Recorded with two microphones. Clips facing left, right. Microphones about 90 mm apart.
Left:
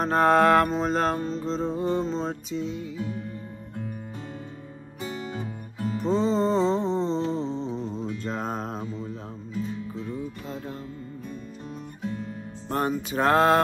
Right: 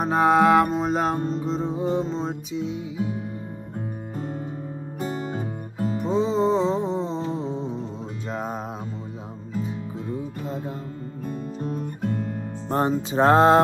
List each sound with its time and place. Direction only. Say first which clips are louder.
0.0 s music: right 1 dB; 10° right (ahead or behind)
5.0 s music: right 4 dB; 45° right (ahead or behind)
5.9 s music: right 1 dB; 5° right (ahead or behind)
10.0 s music: right 3 dB; 25° right (ahead or behind)
12.0 s music: right 3 dB; 55° right (ahead or behind)
12.6 s music: right 4 dB; 25° right (ahead or behind)